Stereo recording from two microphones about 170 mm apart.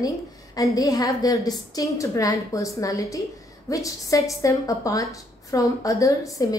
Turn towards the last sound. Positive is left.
turn(degrees=20)  # may be behind; listen again after turning